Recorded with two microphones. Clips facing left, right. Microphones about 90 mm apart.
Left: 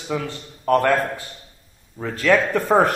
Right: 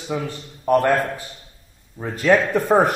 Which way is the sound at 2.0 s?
20° right (ahead or behind).